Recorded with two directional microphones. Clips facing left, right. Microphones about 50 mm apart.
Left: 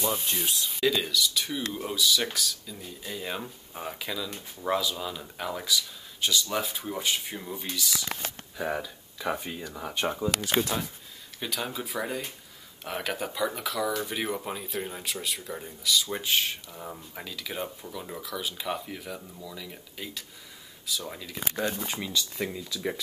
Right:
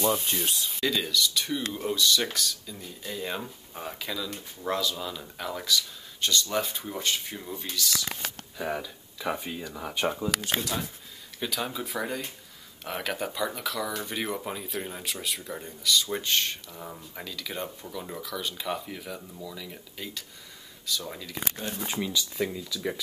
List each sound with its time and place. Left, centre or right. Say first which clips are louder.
0.0 s speech: right 3 dB; centre
10.5 s speech: left 3 dB; left
11.3 s speech: right 1 dB; centre